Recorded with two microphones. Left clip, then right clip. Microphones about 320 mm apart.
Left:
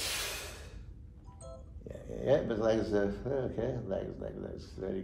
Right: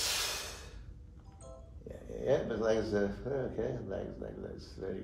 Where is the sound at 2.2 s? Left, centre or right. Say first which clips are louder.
Left 2 dB; left.